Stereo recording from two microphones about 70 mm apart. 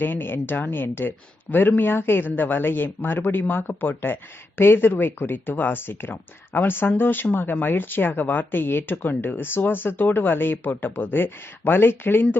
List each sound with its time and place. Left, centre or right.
0.0 s speech: left